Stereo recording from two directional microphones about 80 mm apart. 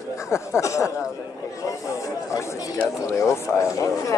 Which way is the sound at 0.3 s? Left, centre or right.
Left.